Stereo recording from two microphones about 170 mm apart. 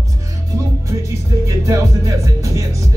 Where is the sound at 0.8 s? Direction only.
20° right (ahead or behind).